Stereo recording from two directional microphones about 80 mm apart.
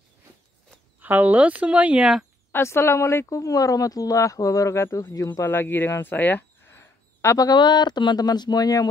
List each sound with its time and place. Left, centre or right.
1.0 s speech: right
2.5 s speech: left
5.5 s speech: left
7.4 s speech: left